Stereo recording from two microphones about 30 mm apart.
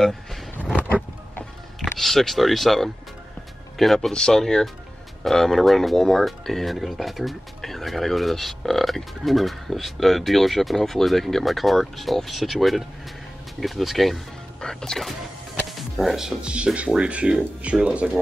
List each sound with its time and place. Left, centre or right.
0.6 s vehicle: left
1.8 s speech: centre
4.3 s speech: centre
6.8 s speech: centre
14.6 s speech: left
16.0 s speech: centre
16.4 s speech: right
17.6 s speech: right
18.0 s speech: right